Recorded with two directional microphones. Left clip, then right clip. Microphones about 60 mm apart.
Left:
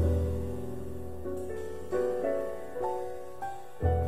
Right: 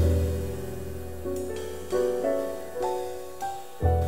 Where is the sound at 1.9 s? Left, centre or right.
Centre.